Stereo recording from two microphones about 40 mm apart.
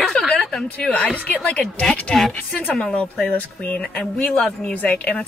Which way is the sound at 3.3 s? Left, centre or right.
Left.